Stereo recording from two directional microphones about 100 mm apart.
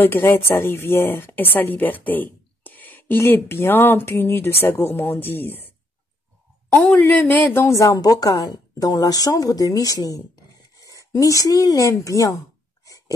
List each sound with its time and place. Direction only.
0.0 s a woman's voice: 20° left (ahead or behind)
7.0 s a woman's voice: 15° left (ahead or behind); by 10.2 s 35° left (ahead or behind)
10.8 s a sound: 35° left (ahead or behind)